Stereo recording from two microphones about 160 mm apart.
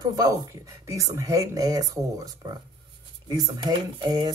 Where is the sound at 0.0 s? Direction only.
25° right (ahead or behind).